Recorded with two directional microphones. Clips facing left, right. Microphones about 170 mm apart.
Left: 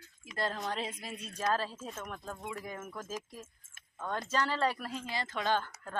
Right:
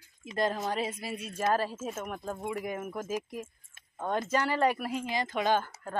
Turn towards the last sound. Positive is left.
turn(degrees=-15)  # may be behind; listen again after turning